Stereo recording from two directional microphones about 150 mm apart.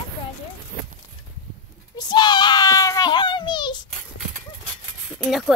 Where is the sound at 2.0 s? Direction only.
30° left (ahead or behind).